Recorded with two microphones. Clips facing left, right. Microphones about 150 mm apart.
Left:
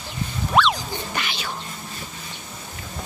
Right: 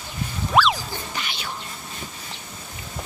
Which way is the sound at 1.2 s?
90° left.